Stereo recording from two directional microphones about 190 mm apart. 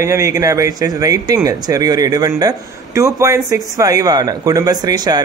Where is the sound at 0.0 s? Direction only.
15° right (ahead or behind).